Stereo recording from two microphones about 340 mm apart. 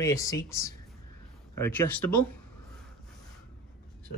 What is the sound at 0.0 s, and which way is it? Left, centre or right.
Speech, centre.